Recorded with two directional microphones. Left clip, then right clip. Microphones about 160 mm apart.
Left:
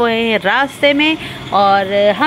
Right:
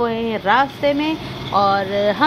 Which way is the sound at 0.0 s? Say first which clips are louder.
Left 6 dB; 20° left (ahead or behind).